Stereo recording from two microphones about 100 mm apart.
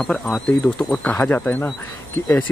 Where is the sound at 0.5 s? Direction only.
15° left (ahead or behind).